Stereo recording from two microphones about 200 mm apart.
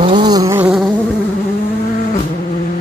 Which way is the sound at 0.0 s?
25° right (ahead or behind).